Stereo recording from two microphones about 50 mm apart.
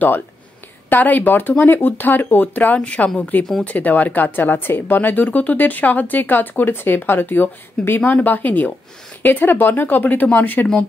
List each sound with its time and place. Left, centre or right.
0.8 s speech: left